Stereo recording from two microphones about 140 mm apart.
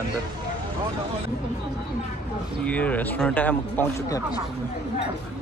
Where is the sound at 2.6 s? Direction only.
10° left (ahead or behind).